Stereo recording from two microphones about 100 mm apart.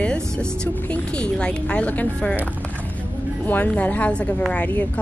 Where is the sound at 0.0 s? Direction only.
10° left (ahead or behind).